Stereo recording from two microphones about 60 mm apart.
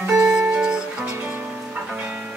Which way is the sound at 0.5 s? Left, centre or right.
Centre.